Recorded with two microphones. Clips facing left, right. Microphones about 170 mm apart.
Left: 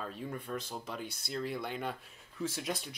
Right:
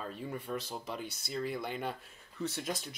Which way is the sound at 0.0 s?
Centre (ahead or behind).